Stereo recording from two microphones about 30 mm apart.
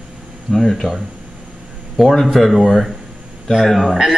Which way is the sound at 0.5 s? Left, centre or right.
Centre.